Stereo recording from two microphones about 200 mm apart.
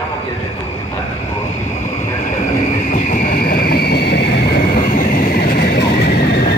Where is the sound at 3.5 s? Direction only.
50° left (ahead or behind).